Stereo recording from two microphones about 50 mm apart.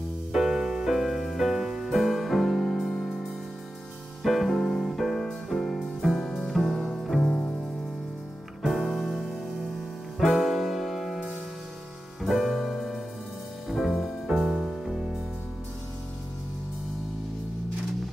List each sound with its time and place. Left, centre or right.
0.3 s music: centre
6.1 s music: centre
7.2 s music: centre
8.6 s music: centre
12.2 s piano: centre
12.7 s music: centre